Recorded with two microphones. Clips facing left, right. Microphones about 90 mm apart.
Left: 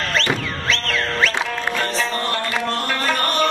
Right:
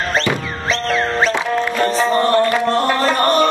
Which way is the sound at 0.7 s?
25° right (ahead or behind).